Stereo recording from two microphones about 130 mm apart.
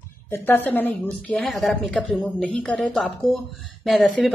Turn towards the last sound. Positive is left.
turn(degrees=0)  # may be behind; listen again after turning